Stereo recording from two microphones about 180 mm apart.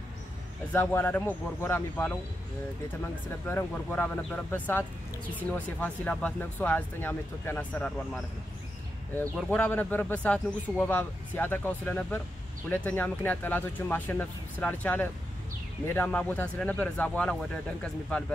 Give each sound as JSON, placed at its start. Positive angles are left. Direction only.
{"t": 0.7, "sound": "a man's voice", "side_deg": 10}
{"t": 3.4, "sound": "a man's voice", "side_deg": 10}
{"t": 9.4, "sound": "a man's voice", "side_deg": 5}